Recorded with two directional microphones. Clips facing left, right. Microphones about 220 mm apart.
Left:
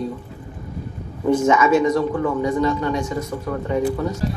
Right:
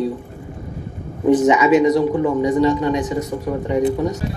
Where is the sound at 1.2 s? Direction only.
20° right (ahead or behind).